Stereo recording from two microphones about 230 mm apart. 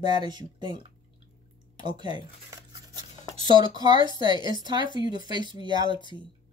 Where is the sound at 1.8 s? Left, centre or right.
Centre.